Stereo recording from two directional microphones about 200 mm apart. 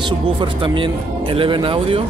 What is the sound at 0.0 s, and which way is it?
Speech, 25° right (ahead or behind).